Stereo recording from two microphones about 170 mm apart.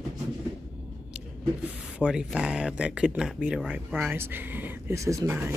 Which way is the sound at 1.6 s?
5° right (ahead or behind).